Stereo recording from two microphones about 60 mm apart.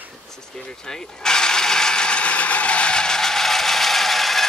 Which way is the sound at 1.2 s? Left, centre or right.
Centre.